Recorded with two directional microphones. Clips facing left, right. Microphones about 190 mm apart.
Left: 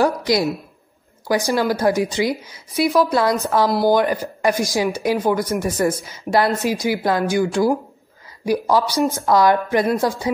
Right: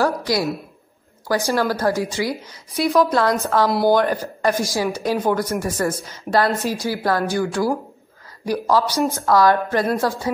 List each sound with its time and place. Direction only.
0.0 s a woman's voice: 20° left (ahead or behind)